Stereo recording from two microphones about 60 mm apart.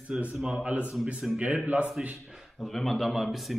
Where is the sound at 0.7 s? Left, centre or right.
Right.